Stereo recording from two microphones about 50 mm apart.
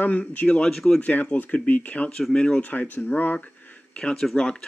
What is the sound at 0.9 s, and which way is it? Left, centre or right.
Speech, left.